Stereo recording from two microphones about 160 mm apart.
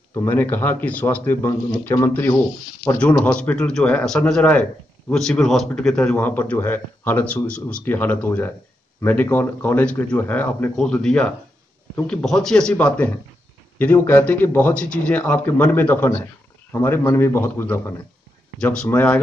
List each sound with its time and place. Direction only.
0.1 s a man's voice: 15° left (ahead or behind)